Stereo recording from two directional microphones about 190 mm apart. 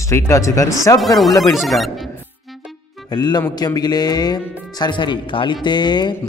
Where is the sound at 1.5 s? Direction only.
Centre (ahead or behind).